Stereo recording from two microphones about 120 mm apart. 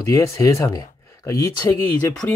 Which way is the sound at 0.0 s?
25° left (ahead or behind).